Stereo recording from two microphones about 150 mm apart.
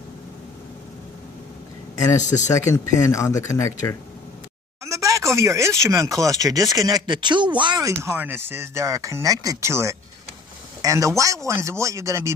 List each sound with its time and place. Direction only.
2.1 s speech: 55° left (ahead or behind)
2.4 s speech: 20° left (ahead or behind)
4.8 s speech: 20° right (ahead or behind)
7.8 s speech: 20° right (ahead or behind)